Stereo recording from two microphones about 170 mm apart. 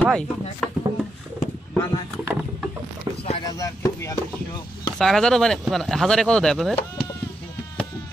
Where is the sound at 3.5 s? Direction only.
20° left (ahead or behind).